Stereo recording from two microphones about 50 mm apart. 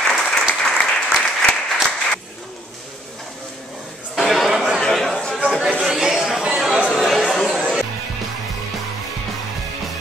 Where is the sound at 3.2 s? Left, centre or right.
Centre.